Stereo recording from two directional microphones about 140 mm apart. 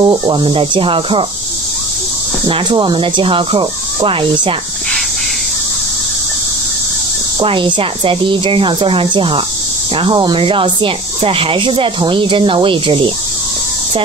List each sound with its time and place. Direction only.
0.0 s speech: 35° right (ahead or behind)
2.4 s speech: 35° right (ahead or behind)
7.3 s speech: 35° right (ahead or behind)